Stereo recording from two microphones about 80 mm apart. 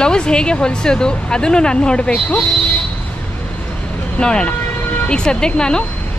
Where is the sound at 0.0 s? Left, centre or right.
Centre.